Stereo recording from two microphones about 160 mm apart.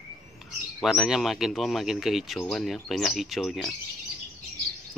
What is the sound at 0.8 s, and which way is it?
Speech, 5° right (ahead or behind).